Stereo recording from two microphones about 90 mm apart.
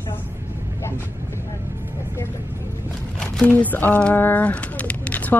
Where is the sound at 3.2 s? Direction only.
15° left (ahead or behind).